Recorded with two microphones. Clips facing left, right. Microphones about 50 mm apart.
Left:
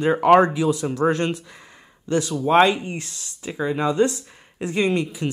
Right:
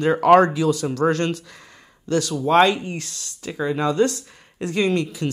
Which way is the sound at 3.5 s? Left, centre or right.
Centre.